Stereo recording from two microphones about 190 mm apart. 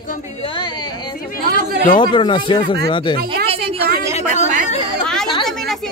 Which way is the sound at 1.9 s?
25° left (ahead or behind).